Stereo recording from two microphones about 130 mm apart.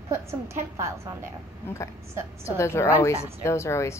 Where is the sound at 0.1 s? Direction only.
20° right (ahead or behind).